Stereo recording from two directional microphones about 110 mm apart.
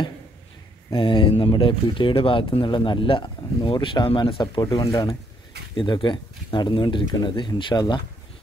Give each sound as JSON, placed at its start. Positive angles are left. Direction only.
{"t": 0.9, "sound": "speech", "side_deg": 45}
{"t": 5.8, "sound": "speech", "side_deg": 50}